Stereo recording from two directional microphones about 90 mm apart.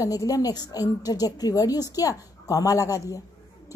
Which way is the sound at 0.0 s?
40° left (ahead or behind).